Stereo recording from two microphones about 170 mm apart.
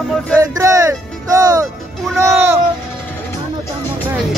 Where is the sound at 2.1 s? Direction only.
15° right (ahead or behind).